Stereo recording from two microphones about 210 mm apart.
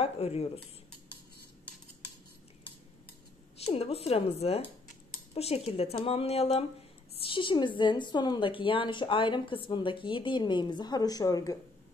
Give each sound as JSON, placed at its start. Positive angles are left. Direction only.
{"t": 0.0, "sound": "speech", "side_deg": 30}
{"t": 3.5, "sound": "a woman's voice", "side_deg": 30}